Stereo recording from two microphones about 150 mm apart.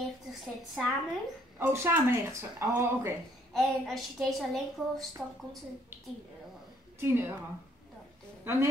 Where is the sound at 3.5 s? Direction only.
Centre (ahead or behind).